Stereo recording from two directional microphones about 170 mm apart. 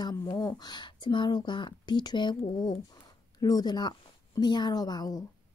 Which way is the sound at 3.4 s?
25° left (ahead or behind).